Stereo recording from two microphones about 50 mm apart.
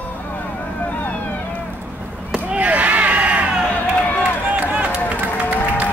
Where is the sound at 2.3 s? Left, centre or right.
Right.